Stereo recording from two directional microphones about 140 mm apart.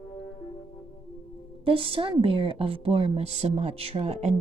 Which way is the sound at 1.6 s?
40° right (ahead or behind).